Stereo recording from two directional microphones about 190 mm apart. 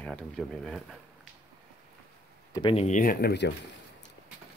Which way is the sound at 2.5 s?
25° left (ahead or behind).